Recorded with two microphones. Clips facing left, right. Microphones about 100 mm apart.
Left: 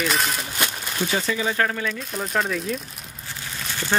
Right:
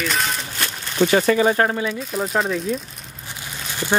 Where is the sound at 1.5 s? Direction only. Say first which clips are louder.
Right 4 dB; 30° right (ahead or behind).